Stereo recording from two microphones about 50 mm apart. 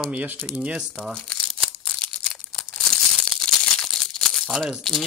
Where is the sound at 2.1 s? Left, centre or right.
Centre.